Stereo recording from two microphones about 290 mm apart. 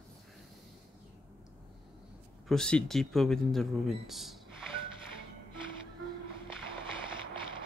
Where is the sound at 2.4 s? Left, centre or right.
Centre.